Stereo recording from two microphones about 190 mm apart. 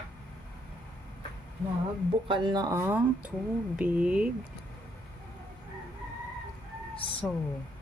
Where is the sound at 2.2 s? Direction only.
25° right (ahead or behind).